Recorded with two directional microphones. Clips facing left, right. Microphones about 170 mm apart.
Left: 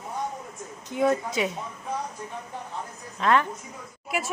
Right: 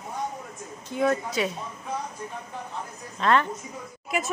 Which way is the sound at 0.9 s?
15° left (ahead or behind).